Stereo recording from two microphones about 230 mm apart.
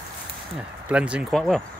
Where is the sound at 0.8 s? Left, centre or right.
Centre.